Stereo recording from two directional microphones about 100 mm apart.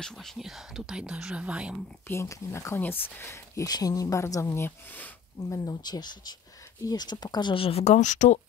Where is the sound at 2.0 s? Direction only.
30° left (ahead or behind).